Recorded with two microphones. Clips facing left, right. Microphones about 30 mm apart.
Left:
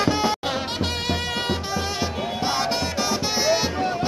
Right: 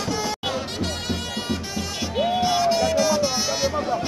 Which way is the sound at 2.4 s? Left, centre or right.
Left.